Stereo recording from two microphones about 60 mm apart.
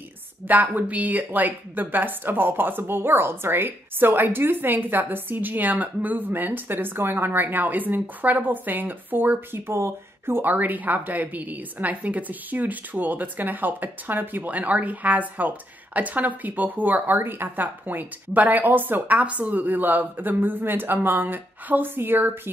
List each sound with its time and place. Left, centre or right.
0.5 s a woman's voice: right
9.7 s speech: right
10.5 s a woman's voice: right